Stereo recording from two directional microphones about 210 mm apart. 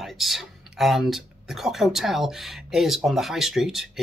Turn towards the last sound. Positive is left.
turn(degrees=0)  # may be behind; listen again after turning